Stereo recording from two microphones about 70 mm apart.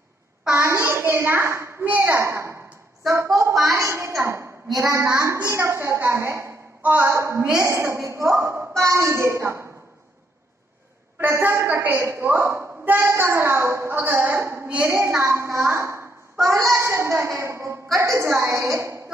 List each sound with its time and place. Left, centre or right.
0.7 s a sound: right
1.9 s a woman's voice: right
6.8 s a woman's voice: right
7.1 s a woman's voice: right
11.1 s a woman's voice: right
14.4 s a woman's voice: right